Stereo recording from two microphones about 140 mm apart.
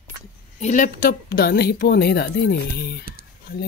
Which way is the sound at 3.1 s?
90° right.